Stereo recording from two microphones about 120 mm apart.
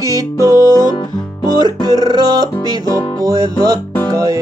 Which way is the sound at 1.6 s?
35° right (ahead or behind).